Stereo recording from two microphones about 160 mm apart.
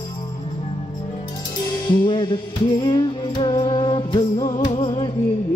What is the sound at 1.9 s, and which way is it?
Music, 30° left (ahead or behind).